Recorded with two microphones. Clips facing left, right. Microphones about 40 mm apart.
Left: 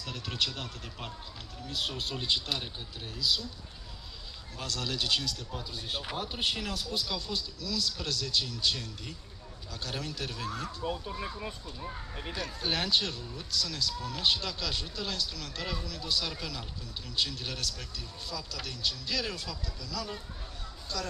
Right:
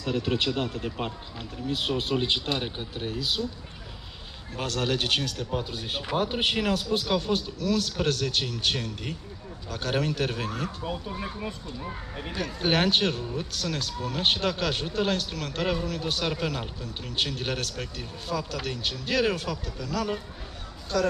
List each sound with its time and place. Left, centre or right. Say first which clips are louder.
0.0 s speech: right 8 dB; right
4.6 s a man's voice: right 7 dB; right
12.4 s a man's voice: right 8 dB; right